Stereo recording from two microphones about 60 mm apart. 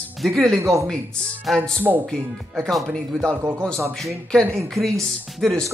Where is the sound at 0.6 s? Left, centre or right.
Right.